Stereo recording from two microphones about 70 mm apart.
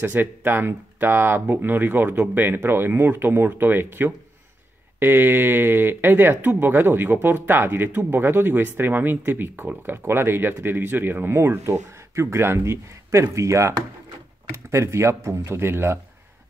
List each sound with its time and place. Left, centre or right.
0.0 s speech: right